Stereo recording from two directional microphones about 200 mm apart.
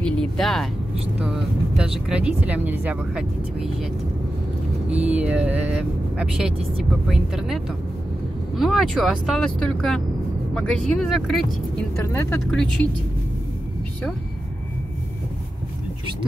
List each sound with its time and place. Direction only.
0.0 s speech: 5° left (ahead or behind)
4.8 s speech: 5° right (ahead or behind); by 12.6 s 10° left (ahead or behind)